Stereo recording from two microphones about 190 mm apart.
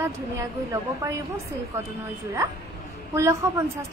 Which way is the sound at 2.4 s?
15° right (ahead or behind).